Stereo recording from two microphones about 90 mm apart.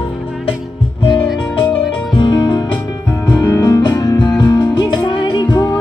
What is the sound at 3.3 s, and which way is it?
Music, 40° left (ahead or behind).